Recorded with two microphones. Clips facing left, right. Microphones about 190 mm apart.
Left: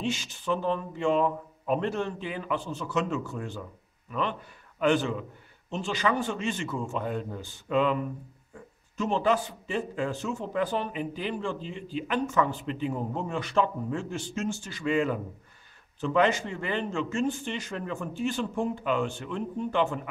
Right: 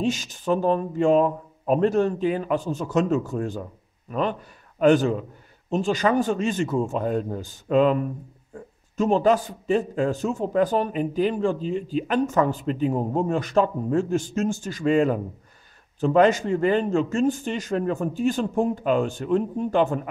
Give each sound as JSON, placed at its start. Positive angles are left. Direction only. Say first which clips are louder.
{"t": 0.0, "sound": "a man's voice", "louder": "right 6 dB", "side_deg": -40}